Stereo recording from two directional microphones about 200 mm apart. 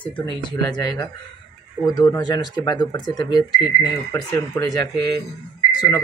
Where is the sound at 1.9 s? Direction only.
20° left (ahead or behind).